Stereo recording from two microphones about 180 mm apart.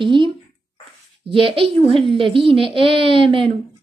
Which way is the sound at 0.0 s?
25° right (ahead or behind).